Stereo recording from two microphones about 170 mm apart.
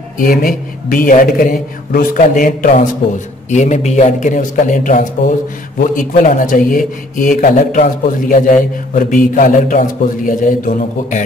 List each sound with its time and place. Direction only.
0.2 s a man's voice: 55° left (ahead or behind)